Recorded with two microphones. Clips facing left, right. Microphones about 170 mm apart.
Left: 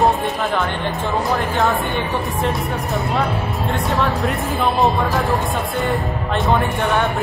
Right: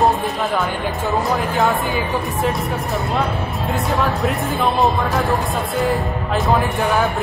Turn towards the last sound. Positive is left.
turn(degrees=0)  # may be behind; listen again after turning